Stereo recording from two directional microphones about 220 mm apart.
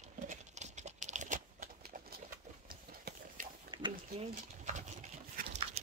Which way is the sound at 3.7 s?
20° right (ahead or behind).